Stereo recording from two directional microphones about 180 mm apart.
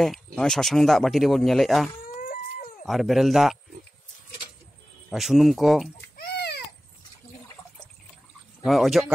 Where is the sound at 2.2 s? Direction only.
50° left (ahead or behind).